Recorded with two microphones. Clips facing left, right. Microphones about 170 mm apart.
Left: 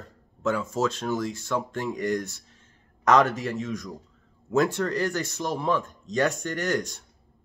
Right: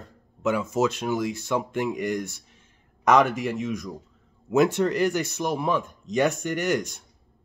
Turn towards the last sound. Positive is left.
turn(degrees=-15)  # may be behind; listen again after turning